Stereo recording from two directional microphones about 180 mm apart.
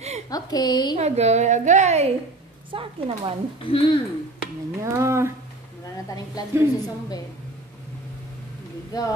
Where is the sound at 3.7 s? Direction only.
30° left (ahead or behind).